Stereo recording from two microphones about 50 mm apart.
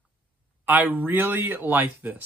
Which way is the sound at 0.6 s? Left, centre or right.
Right.